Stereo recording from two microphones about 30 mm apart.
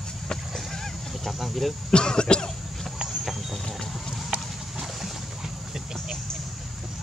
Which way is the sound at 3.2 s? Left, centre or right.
Centre.